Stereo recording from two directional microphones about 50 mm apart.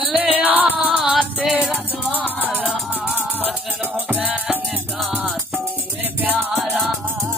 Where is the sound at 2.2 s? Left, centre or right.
Left.